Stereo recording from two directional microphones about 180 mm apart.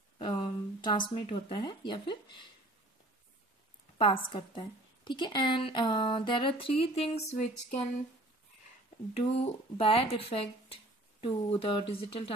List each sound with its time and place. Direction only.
0.2 s speech: 25° left (ahead or behind)
4.0 s a woman's voice: 30° left (ahead or behind)
9.1 s speech: 35° left (ahead or behind)
10.7 s a sound: 30° left (ahead or behind)
11.9 s speech: 30° left (ahead or behind)